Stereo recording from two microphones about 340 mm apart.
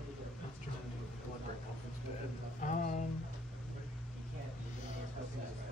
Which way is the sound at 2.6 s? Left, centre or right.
Left.